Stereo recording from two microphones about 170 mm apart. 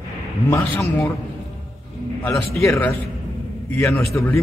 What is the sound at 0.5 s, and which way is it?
Speech, 15° left (ahead or behind).